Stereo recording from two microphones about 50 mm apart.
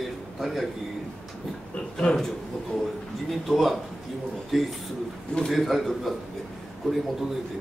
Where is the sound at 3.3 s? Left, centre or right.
Centre.